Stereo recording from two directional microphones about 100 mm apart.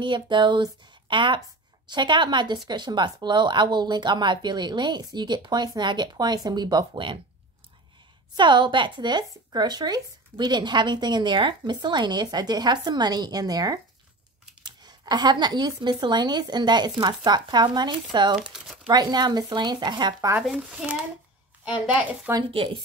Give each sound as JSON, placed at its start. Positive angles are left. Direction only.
{"t": 0.0, "sound": "speech", "side_deg": -50}
{"t": 8.4, "sound": "speech", "side_deg": -50}
{"t": 18.4, "sound": "speech", "side_deg": -5}
{"t": 18.9, "sound": "speech", "side_deg": -45}
{"t": 20.4, "sound": "a woman's voice", "side_deg": -5}
{"t": 22.5, "sound": "speech", "side_deg": -65}